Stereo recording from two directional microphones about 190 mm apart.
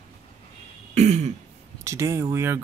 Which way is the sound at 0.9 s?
35° right (ahead or behind).